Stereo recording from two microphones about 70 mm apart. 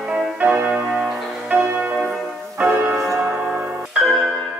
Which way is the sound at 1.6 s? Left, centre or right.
Right.